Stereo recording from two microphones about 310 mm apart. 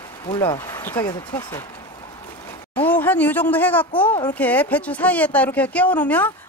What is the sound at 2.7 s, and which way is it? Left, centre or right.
Speech, centre.